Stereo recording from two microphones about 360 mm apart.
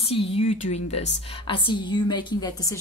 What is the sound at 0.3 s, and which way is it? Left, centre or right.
A woman's voice, centre.